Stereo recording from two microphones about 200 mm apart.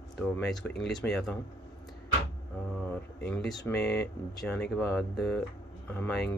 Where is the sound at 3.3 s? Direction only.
Centre (ahead or behind).